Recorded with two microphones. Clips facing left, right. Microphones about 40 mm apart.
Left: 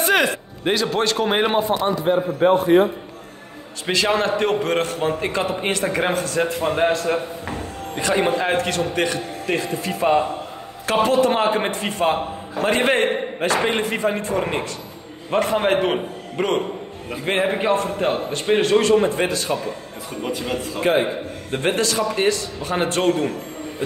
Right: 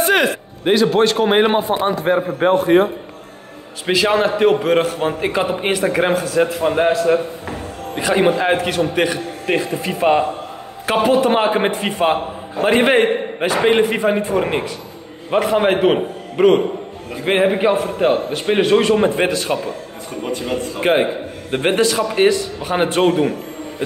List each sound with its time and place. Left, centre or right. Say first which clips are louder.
0.0 s a man's voice: right 3 dB; centre
1.7 s a man's voice: right 2 dB; right
2.0 s a man's voice: right 2 dB; right
3.8 s a man's voice: right 4 dB; centre; by 19.6 s right
20.2 s a man's voice: right 3 dB; centre
21.5 s a man's voice: right 5 dB; right